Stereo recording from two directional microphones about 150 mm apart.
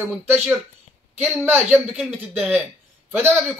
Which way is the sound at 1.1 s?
10° right (ahead or behind).